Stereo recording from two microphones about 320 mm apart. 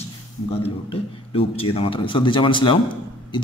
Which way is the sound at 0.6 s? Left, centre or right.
Centre.